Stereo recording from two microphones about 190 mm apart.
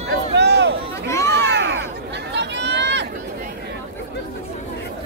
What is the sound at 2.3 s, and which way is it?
Run, 65° right (ahead or behind).